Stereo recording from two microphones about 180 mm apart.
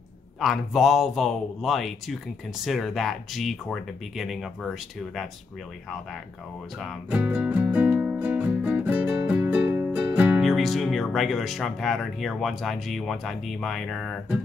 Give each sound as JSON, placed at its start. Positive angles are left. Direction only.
{"t": 0.4, "sound": "speech", "side_deg": 0}
{"t": 6.8, "sound": "music", "side_deg": 0}